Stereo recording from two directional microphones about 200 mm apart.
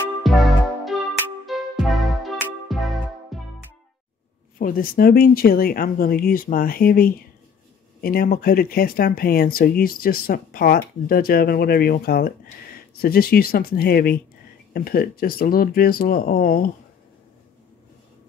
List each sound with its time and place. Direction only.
0.2 s music: centre (ahead or behind)
4.6 s speech: 45° left (ahead or behind)